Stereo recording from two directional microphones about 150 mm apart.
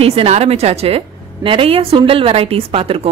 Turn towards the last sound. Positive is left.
turn(degrees=-40)  # may be behind; listen again after turning